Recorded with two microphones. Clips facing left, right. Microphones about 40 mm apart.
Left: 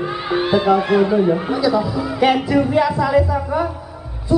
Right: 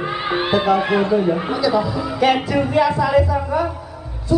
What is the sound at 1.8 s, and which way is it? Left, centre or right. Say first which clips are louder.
Speech: left 1 dB; centre.